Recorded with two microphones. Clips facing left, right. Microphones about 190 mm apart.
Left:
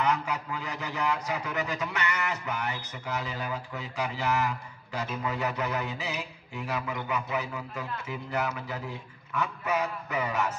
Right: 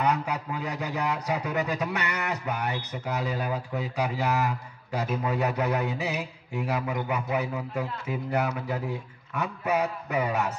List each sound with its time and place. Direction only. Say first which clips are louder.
0.0 s a man's voice: right 2 dB; 60° right (ahead or behind)